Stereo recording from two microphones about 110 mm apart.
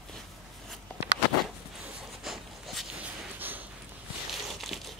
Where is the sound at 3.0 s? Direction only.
15° right (ahead or behind).